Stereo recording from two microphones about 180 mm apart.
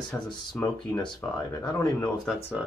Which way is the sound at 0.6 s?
25° left (ahead or behind).